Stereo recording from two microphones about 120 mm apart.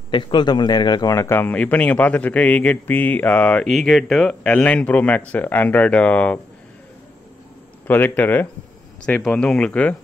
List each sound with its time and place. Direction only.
0.1 s a man's voice: 40° left (ahead or behind); by 6.4 s 10° left (ahead or behind)
7.8 s a man's voice: 15° left (ahead or behind)